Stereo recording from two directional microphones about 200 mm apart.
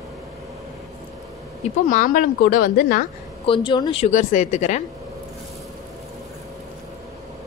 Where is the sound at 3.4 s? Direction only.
25° left (ahead or behind).